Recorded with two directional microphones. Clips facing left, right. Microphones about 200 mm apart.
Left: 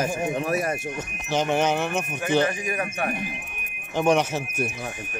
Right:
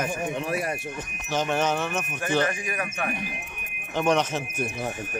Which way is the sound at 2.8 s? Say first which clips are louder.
Left 3 dB; 35° left (ahead or behind).